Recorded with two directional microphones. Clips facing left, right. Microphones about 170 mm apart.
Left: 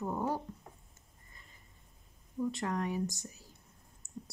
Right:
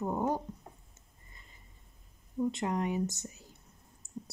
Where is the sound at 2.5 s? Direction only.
20° right (ahead or behind).